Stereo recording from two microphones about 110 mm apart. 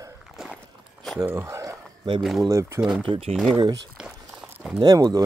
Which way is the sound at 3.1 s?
60° right (ahead or behind).